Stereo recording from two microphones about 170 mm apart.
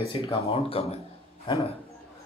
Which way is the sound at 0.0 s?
35° left (ahead or behind).